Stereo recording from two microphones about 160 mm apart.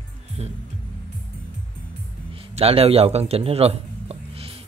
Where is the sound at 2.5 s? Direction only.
40° right (ahead or behind).